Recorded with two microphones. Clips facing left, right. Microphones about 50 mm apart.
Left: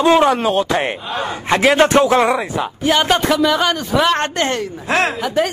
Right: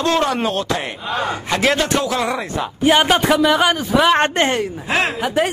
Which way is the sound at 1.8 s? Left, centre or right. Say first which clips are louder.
Left 7 dB; left.